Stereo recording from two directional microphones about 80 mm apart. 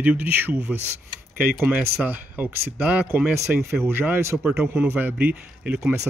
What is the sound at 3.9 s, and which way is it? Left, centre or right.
Speech, right.